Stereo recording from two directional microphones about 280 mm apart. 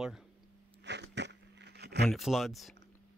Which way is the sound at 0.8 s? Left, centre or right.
Right.